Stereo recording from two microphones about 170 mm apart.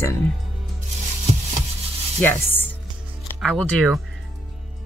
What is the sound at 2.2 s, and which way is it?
Chopping, 10° left (ahead or behind).